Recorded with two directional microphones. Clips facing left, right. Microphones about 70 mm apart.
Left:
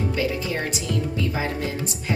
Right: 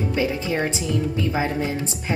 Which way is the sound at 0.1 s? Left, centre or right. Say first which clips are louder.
Right 2 dB; right.